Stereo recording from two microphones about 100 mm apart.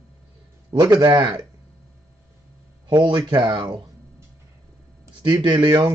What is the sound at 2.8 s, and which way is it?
Speech, 50° right (ahead or behind).